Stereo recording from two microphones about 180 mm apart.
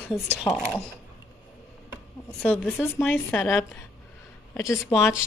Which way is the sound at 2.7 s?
10° left (ahead or behind).